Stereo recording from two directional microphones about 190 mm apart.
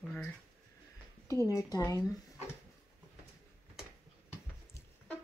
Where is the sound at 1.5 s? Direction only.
20° left (ahead or behind).